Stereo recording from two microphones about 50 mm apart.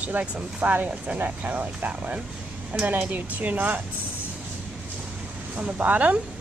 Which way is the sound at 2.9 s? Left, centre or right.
Right.